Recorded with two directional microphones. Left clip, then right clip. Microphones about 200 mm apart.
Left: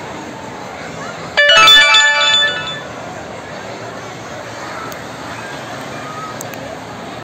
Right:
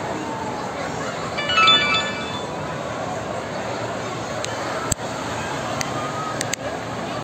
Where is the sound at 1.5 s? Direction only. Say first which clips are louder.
Left 9 dB; 60° left (ahead or behind).